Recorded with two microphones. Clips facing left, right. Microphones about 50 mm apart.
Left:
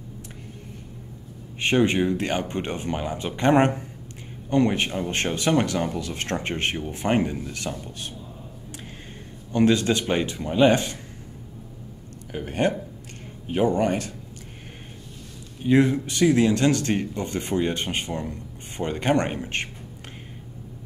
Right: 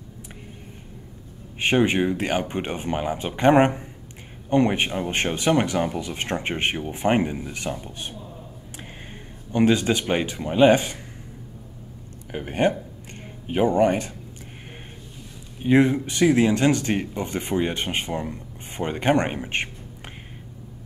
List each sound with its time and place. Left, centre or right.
1.6 s speech: centre
9.5 s speech: centre
12.3 s speech: centre
15.6 s speech: right